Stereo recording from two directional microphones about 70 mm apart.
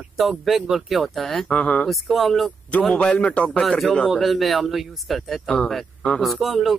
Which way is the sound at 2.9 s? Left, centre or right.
Centre.